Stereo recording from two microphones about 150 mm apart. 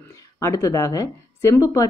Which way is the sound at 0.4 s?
20° left (ahead or behind).